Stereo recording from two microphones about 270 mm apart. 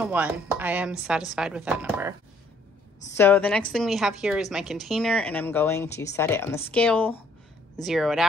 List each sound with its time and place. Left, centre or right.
0.0 s a woman's voice: centre
3.2 s a woman's voice: centre